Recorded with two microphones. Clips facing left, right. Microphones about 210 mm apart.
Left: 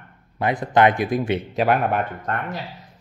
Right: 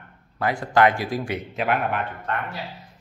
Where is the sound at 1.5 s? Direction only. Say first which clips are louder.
Left 4 dB; 40° left (ahead or behind).